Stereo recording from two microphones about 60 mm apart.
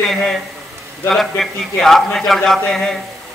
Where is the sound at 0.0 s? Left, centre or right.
Centre.